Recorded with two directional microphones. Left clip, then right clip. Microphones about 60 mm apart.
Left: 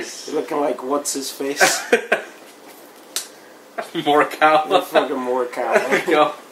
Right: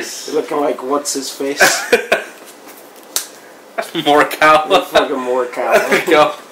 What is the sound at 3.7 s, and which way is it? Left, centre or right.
Speech, right.